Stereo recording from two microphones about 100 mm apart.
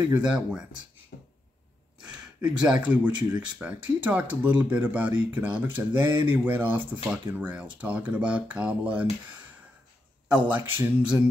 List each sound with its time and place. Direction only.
0.1 s speech: 10° right (ahead or behind)
2.0 s speech: 10° right (ahead or behind)
10.2 s speech: 15° right (ahead or behind)